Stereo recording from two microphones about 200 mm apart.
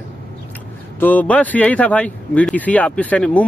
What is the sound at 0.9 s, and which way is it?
Speech, 10° left (ahead or behind).